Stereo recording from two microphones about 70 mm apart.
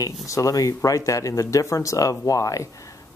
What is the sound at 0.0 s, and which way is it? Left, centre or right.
Speech, left.